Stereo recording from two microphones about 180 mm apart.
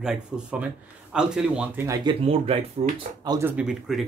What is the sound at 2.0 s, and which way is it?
Speech, 30° right (ahead or behind).